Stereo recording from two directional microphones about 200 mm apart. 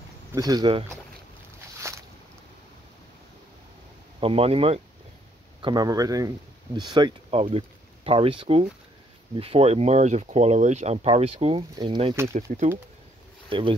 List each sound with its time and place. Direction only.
0.3 s speech: 20° right (ahead or behind)
1.8 s a sound: 15° right (ahead or behind)
4.2 s speech: 30° right (ahead or behind)
12.4 s speech: 40° right (ahead or behind)
13.5 s speech: 25° right (ahead or behind)